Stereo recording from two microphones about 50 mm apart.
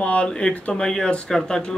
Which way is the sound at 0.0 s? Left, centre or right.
Left.